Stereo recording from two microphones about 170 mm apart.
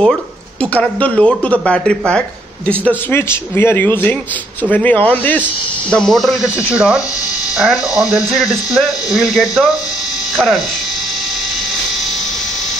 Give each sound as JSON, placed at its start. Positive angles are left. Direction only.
{"t": 0.0, "sound": "speech", "side_deg": 5}